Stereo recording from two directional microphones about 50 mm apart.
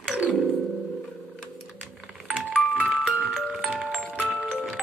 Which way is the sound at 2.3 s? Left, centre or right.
Right.